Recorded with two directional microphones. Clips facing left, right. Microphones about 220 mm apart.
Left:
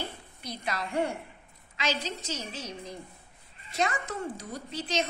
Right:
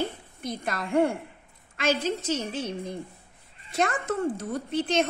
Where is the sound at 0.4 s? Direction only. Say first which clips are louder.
Right 4 dB; 50° right (ahead or behind).